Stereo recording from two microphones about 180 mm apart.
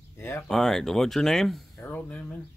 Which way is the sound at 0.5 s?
Centre (ahead or behind).